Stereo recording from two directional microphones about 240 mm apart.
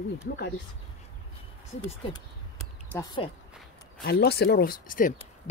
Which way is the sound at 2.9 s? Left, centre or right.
Centre.